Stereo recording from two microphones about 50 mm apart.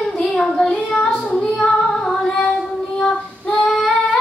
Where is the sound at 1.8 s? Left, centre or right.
Centre.